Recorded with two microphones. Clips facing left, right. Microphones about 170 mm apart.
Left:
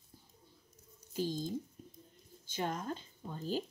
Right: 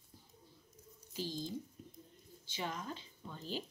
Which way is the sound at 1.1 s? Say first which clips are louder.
Left 5 dB; 50° left (ahead or behind).